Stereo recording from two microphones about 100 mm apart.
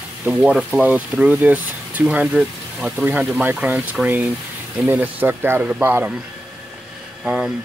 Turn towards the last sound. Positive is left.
turn(degrees=-5)  # may be behind; listen again after turning